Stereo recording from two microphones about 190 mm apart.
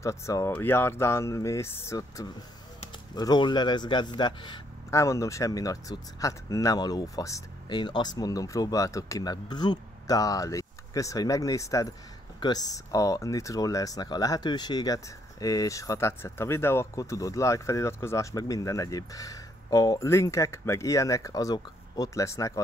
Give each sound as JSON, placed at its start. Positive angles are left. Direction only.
{"t": 0.0, "sound": "a man's voice", "side_deg": 15}